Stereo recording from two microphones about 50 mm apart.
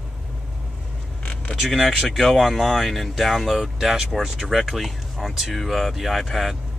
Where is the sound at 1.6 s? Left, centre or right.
Centre.